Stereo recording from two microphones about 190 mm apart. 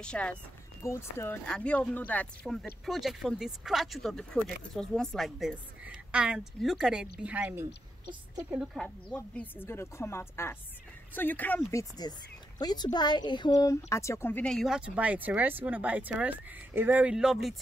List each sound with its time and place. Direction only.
0.0 s speech: 5° left (ahead or behind); by 8.6 s 10° right (ahead or behind)
8.7 s a woman's voice: 5° left (ahead or behind)